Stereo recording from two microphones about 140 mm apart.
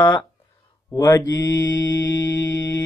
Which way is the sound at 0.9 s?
25° left (ahead or behind).